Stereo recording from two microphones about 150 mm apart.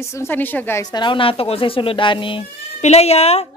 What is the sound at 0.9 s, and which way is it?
Speech, 35° left (ahead or behind).